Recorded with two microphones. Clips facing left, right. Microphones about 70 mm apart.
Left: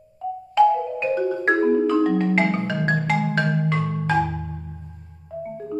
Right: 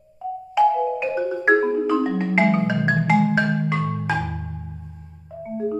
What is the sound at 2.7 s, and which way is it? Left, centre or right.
Marimba, centre.